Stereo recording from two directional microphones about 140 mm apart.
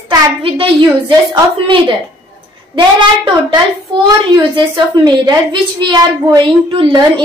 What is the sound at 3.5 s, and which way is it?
A child's voice, 30° right (ahead or behind).